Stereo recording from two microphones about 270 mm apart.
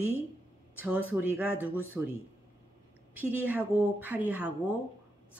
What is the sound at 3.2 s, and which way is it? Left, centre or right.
Speech, centre.